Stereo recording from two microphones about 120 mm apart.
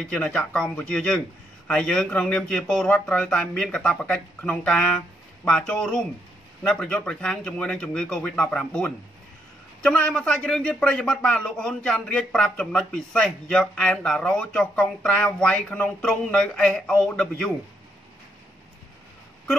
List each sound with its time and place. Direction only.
0.0 s speech: 5° left (ahead or behind)